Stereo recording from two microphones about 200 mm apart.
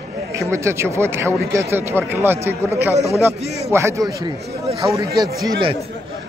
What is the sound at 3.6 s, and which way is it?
A man's voice, 15° right (ahead or behind).